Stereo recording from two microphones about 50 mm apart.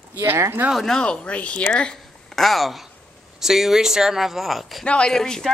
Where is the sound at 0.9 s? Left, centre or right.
Centre.